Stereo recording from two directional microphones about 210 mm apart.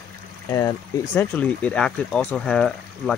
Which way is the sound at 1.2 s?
5° left (ahead or behind).